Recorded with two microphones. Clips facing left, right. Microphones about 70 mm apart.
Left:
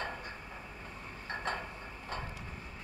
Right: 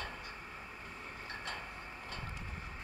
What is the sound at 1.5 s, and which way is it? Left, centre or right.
Vehicle, left.